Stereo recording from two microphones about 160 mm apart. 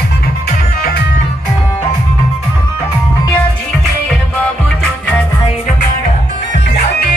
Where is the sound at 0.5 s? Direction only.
70° left (ahead or behind).